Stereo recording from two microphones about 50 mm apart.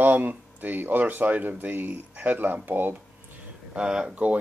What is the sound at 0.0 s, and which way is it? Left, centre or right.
Speech, right.